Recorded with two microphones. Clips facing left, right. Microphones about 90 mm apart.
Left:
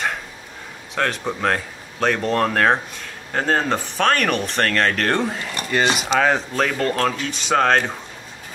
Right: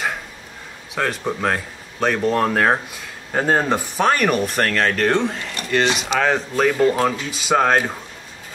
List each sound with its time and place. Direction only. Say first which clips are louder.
0.9 s speech: even; 5° right (ahead or behind)